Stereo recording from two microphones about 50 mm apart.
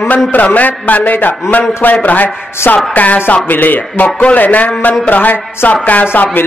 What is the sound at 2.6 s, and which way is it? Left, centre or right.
Speech, left.